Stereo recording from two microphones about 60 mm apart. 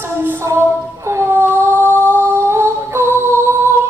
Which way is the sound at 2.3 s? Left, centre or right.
Right.